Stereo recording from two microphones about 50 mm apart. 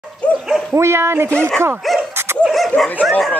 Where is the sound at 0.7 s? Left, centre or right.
Right.